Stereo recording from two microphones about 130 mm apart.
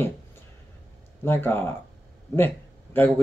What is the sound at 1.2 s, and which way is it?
Speech, 15° left (ahead or behind).